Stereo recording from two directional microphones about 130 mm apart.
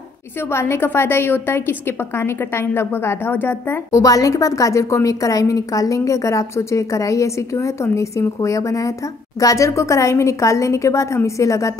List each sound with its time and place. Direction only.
0.5 s a woman's voice: 20° left (ahead or behind)